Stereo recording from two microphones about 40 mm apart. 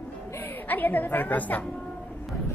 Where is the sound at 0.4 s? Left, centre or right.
Left.